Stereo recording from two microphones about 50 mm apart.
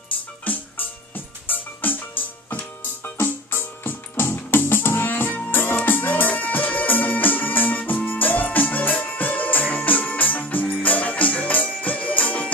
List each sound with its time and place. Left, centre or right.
0.5 s music: left
3.2 s music: left